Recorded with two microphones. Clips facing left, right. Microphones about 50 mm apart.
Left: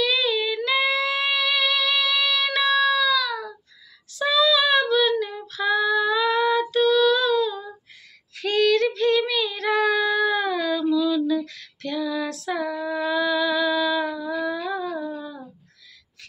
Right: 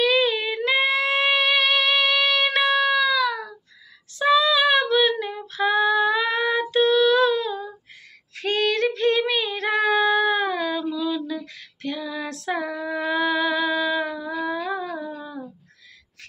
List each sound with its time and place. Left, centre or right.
0.0 s music: right
4.2 s female singing: right
14.4 s humming: right
15.0 s a sound: centre